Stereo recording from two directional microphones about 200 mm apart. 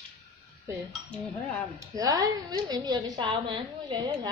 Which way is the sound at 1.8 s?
15° right (ahead or behind).